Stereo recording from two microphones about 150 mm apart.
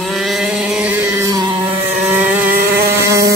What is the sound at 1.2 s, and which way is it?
Music, 25° right (ahead or behind).